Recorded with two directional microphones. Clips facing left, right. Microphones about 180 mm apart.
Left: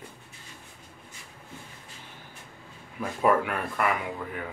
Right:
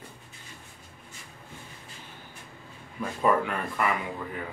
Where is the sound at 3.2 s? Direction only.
5° left (ahead or behind).